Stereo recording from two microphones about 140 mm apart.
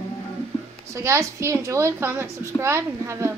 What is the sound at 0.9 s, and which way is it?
A child's voice, 20° right (ahead or behind).